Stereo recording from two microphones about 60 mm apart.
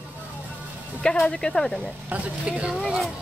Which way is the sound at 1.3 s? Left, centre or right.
Centre.